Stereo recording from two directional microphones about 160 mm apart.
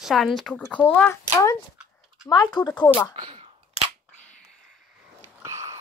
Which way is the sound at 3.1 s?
30° right (ahead or behind).